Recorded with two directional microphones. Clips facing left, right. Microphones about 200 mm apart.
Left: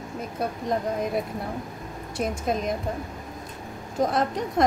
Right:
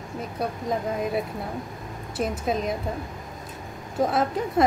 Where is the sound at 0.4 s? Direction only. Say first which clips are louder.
Left 1 dB; centre (ahead or behind).